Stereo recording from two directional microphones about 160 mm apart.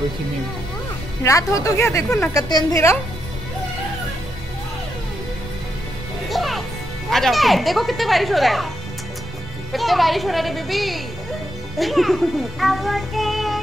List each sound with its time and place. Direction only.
1.2 s speech: 20° left (ahead or behind)
6.3 s music: centre (ahead or behind)
7.1 s speech: centre (ahead or behind)
9.7 s speech: centre (ahead or behind)